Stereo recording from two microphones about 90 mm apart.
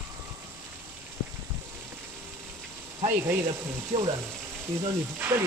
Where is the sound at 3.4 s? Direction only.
90° right.